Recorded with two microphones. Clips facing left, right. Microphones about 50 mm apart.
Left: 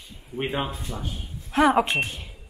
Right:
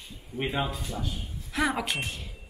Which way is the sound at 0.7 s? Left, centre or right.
Left.